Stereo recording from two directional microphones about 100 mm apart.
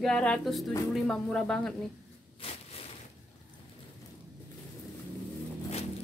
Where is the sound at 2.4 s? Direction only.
70° left (ahead or behind).